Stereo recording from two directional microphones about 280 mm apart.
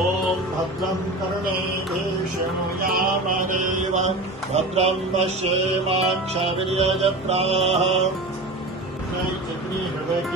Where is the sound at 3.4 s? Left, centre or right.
Right.